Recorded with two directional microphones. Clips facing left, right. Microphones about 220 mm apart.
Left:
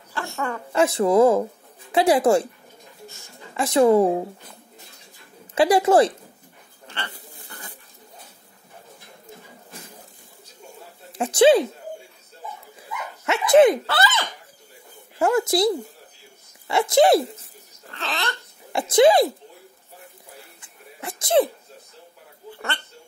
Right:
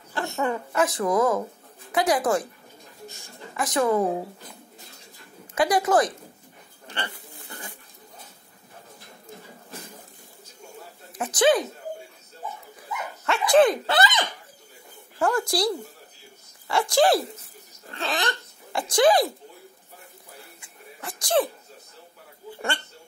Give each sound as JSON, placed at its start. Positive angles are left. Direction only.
{"t": 0.1, "sound": "a sound", "side_deg": -20}
{"t": 0.7, "sound": "speech", "side_deg": 25}
{"t": 3.5, "sound": "speech", "side_deg": 25}
{"t": 5.5, "sound": "speech", "side_deg": 30}
{"t": 6.9, "sound": "a sound", "side_deg": -15}
{"t": 11.1, "sound": "speech", "side_deg": 30}
{"t": 13.2, "sound": "dog", "side_deg": 20}
{"t": 13.8, "sound": "speech", "side_deg": -15}
{"t": 15.1, "sound": "speech", "side_deg": 20}
{"t": 18.0, "sound": "speech", "side_deg": -15}
{"t": 18.7, "sound": "speech", "side_deg": 25}
{"t": 21.0, "sound": "a sound", "side_deg": 25}